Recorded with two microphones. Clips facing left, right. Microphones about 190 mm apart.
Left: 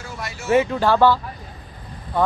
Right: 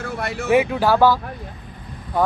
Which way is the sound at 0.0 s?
60° right (ahead or behind).